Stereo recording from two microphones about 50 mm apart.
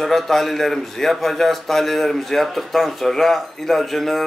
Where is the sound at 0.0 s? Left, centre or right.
Centre.